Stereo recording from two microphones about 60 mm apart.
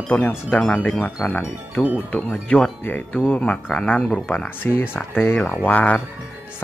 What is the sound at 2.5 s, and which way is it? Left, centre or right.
Speech, left.